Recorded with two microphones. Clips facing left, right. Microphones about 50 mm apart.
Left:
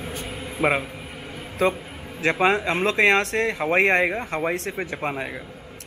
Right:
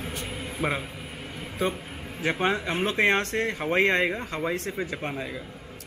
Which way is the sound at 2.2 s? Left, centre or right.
Left.